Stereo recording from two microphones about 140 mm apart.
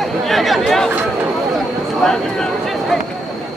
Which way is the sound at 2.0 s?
Centre (ahead or behind).